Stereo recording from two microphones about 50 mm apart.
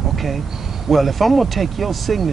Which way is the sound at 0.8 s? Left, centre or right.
Centre.